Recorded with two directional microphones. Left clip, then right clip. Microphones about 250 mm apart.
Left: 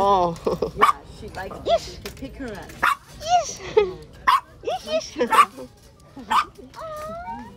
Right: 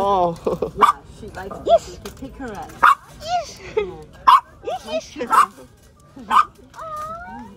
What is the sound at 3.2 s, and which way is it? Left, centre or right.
Dog, centre.